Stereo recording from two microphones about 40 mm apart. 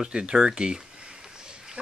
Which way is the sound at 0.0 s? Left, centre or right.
Right.